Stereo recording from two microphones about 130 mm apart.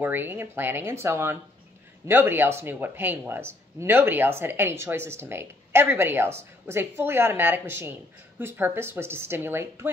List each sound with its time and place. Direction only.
0.0 s speech: 15° right (ahead or behind)